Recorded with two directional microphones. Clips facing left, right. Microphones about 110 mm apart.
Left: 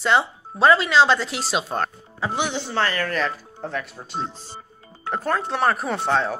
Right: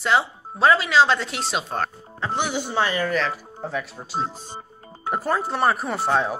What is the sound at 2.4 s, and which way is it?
Speech, 10° right (ahead or behind).